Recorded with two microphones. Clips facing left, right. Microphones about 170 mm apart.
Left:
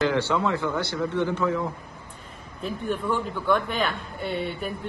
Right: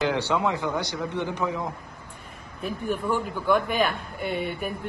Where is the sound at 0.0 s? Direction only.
15° right (ahead or behind).